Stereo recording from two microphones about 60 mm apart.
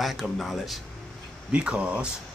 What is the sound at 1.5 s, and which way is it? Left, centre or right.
Speech, centre.